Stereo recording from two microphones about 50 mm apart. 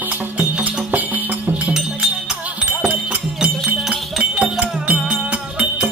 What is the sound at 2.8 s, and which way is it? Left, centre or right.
Music, right.